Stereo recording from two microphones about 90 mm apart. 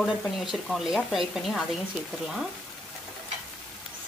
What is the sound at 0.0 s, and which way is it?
Speech, centre (ahead or behind).